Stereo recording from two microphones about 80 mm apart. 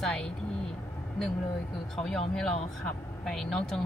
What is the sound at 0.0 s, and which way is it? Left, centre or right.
Vehicle, centre.